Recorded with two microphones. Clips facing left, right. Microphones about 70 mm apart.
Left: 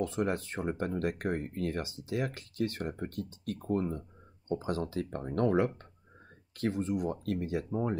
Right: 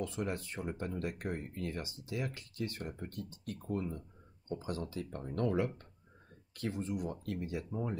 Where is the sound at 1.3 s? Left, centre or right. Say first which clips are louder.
Left 6 dB; left.